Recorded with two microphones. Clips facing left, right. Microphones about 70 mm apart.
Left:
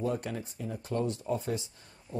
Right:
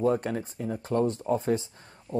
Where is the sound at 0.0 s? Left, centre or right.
Right.